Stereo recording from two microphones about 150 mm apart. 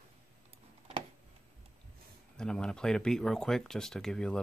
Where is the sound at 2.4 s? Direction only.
5° left (ahead or behind).